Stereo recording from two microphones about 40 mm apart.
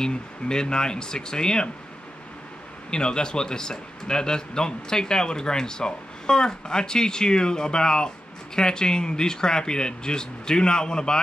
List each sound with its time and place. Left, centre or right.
0.0 s a man's voice: centre
2.9 s a man's voice: left